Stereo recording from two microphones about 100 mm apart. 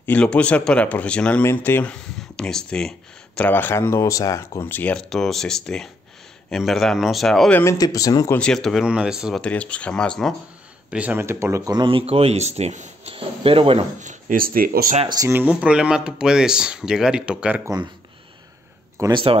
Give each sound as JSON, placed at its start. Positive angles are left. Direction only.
{"t": 0.0, "sound": "speech", "side_deg": 15}
{"t": 1.4, "sound": "speech", "side_deg": 25}
{"t": 1.9, "sound": "speech", "side_deg": 5}
{"t": 3.3, "sound": "speech", "side_deg": 20}
{"t": 4.9, "sound": "speech", "side_deg": 5}
{"t": 7.7, "sound": "speech", "side_deg": 35}
{"t": 8.4, "sound": "speech", "side_deg": 5}
{"t": 8.8, "sound": "speech", "side_deg": -10}
{"t": 9.3, "sound": "speech", "side_deg": 10}
{"t": 10.9, "sound": "speech", "side_deg": -15}
{"t": 11.1, "sound": "speech", "side_deg": -25}
{"t": 11.7, "sound": "speech", "side_deg": -55}
{"t": 15.2, "sound": "speech", "side_deg": -15}
{"t": 19.0, "sound": "speech", "side_deg": -30}